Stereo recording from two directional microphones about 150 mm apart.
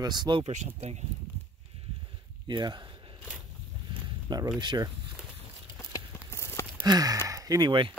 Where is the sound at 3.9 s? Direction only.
25° right (ahead or behind).